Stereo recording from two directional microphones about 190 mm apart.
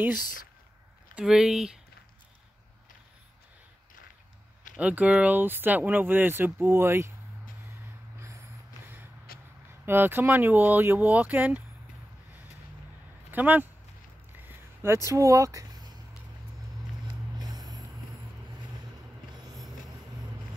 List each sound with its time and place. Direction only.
1.1 s speech: 5° right (ahead or behind)
4.7 s speech: 5° right (ahead or behind)
9.3 s a sound: 50° left (ahead or behind)
9.8 s speech: 10° right (ahead or behind)
13.3 s speech: 10° right (ahead or behind)
14.3 s a sound: 10° right (ahead or behind)
17.4 s vehicle: 20° right (ahead or behind)